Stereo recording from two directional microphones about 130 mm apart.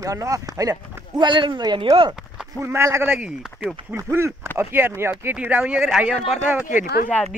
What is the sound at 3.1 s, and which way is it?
Speech, 5° right (ahead or behind).